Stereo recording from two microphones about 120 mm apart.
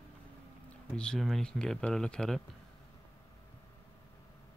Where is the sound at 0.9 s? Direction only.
5° left (ahead or behind).